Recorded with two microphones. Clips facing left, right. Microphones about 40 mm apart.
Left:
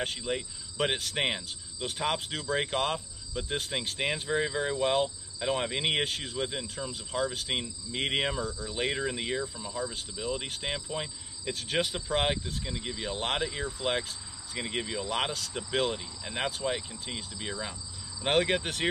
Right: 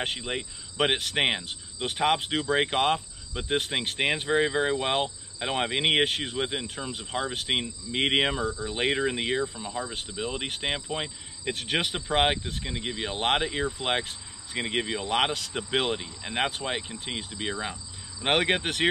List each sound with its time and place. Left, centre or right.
0.0 s cricket: right